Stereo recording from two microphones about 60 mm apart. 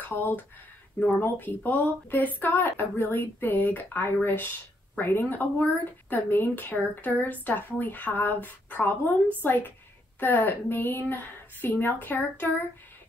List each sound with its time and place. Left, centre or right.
0.0 s a woman's voice: left